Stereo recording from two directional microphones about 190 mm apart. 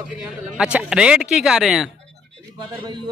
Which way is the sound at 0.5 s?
5° right (ahead or behind).